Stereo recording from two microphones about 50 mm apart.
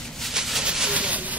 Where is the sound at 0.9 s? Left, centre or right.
Right.